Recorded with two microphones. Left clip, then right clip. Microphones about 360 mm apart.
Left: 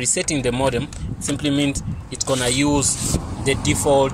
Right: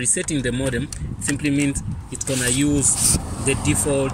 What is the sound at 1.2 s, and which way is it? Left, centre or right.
Speech, left.